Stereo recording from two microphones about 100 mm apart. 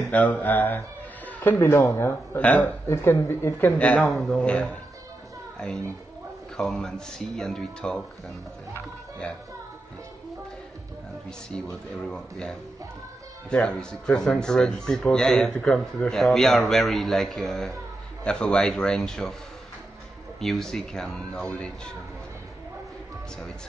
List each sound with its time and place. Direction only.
0.0 s speech: 15° left (ahead or behind)
2.3 s speech: 15° left (ahead or behind)
2.9 s speech: 25° left (ahead or behind)
3.7 s speech: 10° left (ahead or behind)
6.5 s a man's voice: 5° left (ahead or behind)
12.0 s a man's voice: 5° left (ahead or behind)
20.3 s a man's voice: 5° left (ahead or behind)